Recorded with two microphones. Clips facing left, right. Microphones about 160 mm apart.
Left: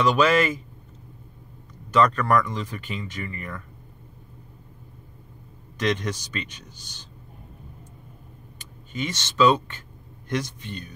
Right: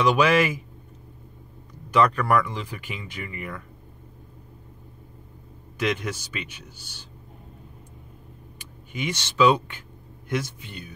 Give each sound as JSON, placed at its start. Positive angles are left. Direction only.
{"t": 0.0, "sound": "speech", "side_deg": -10}
{"t": 1.9, "sound": "speech", "side_deg": -10}
{"t": 5.8, "sound": "speech", "side_deg": -10}
{"t": 8.5, "sound": "speech", "side_deg": -10}